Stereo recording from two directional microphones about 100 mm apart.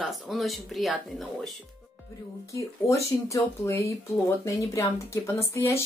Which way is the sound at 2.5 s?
30° left (ahead or behind).